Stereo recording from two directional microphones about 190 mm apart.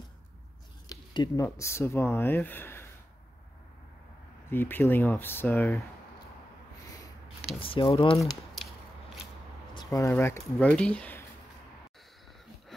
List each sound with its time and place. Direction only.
0.8 s speech: 20° left (ahead or behind)
4.5 s speech: 10° left (ahead or behind)
7.6 s speech: 30° left (ahead or behind)
9.8 s speech: 15° left (ahead or behind)